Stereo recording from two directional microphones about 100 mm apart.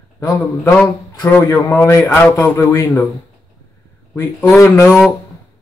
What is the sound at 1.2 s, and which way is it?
A man's voice, 30° left (ahead or behind).